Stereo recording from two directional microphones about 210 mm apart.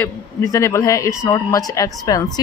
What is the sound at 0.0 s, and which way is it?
A woman's voice, 15° left (ahead or behind).